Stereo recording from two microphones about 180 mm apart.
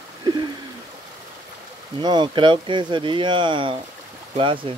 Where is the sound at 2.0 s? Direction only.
25° right (ahead or behind).